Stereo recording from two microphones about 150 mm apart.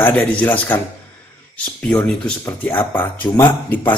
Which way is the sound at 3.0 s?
15° left (ahead or behind).